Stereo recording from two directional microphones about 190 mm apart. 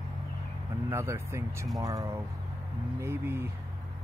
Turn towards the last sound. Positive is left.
turn(degrees=-15)  # may be behind; listen again after turning